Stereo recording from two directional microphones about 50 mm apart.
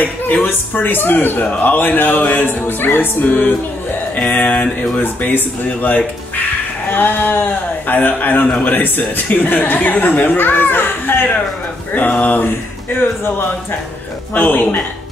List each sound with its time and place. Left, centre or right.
0.0 s speech: left
1.4 s speech: left
12.9 s a man's voice: left